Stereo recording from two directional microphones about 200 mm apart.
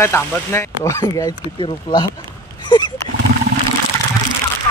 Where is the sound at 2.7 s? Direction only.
20° left (ahead or behind).